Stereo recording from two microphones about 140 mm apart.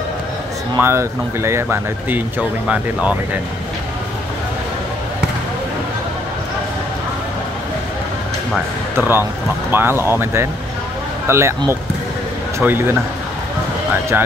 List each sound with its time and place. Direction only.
0.7 s speech: 20° right (ahead or behind)
8.9 s a man's voice: 15° right (ahead or behind)
14.1 s speech: 15° right (ahead or behind)